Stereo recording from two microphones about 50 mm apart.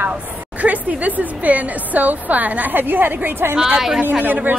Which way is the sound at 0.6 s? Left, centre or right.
Right.